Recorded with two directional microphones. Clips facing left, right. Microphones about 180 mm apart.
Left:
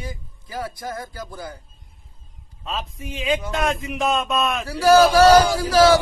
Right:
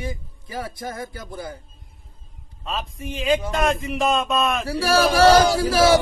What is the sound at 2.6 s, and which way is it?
A man's voice, centre (ahead or behind).